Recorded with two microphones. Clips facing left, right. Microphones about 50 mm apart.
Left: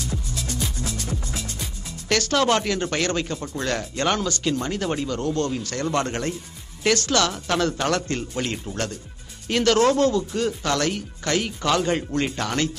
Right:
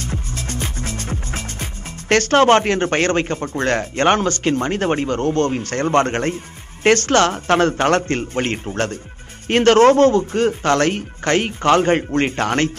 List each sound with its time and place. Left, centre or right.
0.0 s music: right
9.5 s speech: right